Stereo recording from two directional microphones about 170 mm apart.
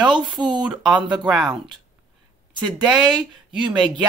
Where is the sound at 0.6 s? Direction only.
5° right (ahead or behind).